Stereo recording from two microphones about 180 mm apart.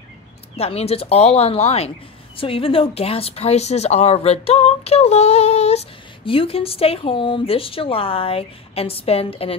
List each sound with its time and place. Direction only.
0.6 s a woman's voice: 35° left (ahead or behind)